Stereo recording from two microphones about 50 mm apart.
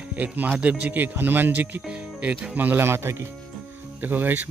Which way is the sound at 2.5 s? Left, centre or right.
Right.